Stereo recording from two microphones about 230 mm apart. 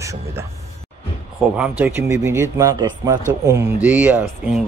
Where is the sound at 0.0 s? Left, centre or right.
Centre.